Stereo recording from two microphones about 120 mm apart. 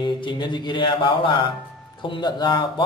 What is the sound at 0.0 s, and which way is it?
A man's voice, 40° left (ahead or behind).